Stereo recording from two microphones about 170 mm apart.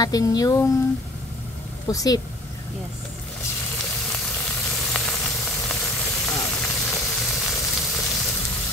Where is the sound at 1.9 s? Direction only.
20° left (ahead or behind).